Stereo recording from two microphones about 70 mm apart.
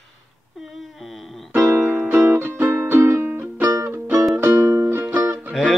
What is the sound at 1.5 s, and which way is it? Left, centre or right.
Music, right.